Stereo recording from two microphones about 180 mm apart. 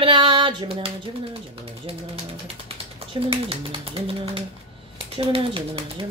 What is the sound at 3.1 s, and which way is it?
Speech, 30° right (ahead or behind).